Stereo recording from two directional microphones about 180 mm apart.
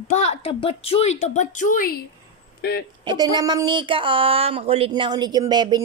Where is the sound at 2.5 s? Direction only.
60° left (ahead or behind).